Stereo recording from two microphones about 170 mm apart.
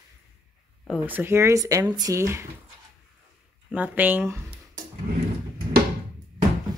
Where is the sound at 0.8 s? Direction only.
10° right (ahead or behind).